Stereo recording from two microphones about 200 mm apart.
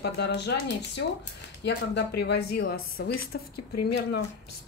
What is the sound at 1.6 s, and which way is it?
A woman's voice, 55° left (ahead or behind).